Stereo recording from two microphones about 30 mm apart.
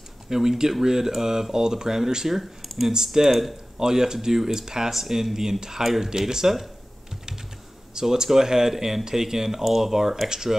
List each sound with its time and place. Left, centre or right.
0.3 s speech: centre
2.6 s a sound: centre
3.1 s speech: centre
4.9 s speech: centre
7.9 s speech: centre